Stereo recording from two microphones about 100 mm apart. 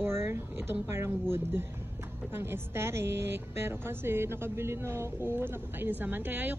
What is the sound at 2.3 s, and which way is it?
Speech, 25° right (ahead or behind).